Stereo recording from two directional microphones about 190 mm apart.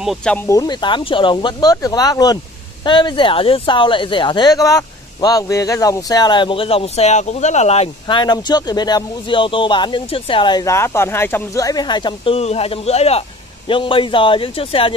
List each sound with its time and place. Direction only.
0.0 s speech: centre (ahead or behind)
0.5 s speech: 20° left (ahead or behind)